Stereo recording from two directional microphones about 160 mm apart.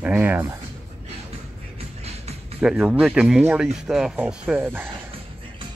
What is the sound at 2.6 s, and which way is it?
Speech, 5° right (ahead or behind).